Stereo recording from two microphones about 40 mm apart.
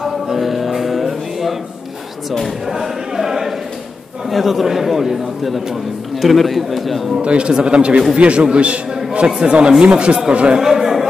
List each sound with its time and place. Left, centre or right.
0.0 s music: centre
2.6 s a sound: centre
4.3 s a man's voice: centre
7.2 s a man's voice: right
9.3 s speech: right
10.6 s chatter: centre